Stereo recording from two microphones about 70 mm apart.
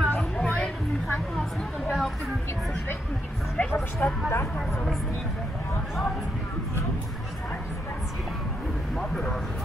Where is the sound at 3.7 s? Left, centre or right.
Left.